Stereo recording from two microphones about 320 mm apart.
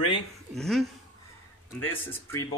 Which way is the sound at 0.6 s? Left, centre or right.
Centre.